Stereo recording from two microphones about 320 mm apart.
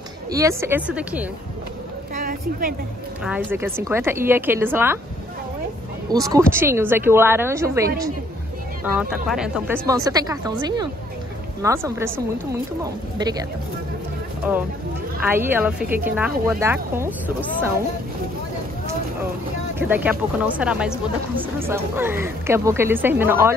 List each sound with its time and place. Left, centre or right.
0.3 s a woman's voice: centre
2.1 s a sound: right
3.3 s a woman's voice: centre
6.0 s a woman's voice: centre
13.2 s a woman's voice: centre
19.8 s a woman's voice: centre